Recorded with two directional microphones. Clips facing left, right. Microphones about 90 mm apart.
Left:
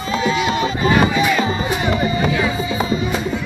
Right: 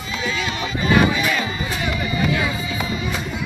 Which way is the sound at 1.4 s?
30° left (ahead or behind).